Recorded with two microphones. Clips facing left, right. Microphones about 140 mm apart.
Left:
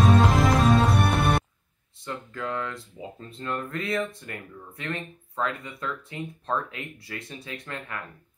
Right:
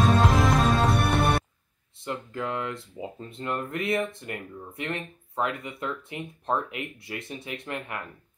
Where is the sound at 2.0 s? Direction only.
20° right (ahead or behind).